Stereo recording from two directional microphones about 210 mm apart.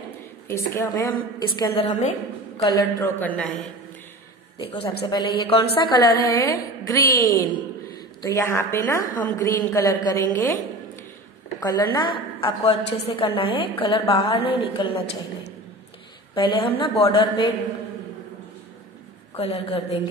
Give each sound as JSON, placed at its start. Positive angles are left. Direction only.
{"t": 0.5, "sound": "a woman's voice", "side_deg": 15}
{"t": 5.0, "sound": "a woman's voice", "side_deg": 20}
{"t": 16.3, "sound": "a woman's voice", "side_deg": 20}
{"t": 19.3, "sound": "a woman's voice", "side_deg": 30}